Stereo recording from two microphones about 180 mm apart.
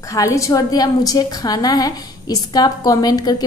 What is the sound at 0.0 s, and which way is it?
A woman's voice, 15° left (ahead or behind).